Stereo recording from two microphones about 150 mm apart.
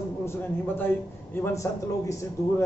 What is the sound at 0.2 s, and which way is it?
A man's voice, 15° left (ahead or behind).